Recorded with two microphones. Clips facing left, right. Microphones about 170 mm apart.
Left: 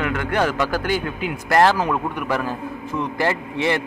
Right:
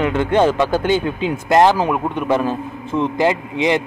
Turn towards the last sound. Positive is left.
turn(degrees=-15)  # may be behind; listen again after turning